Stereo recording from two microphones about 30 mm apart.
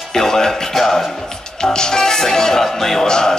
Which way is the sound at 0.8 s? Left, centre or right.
Centre.